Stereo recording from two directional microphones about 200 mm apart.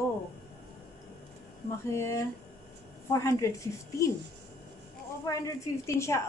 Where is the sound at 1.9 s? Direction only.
15° left (ahead or behind).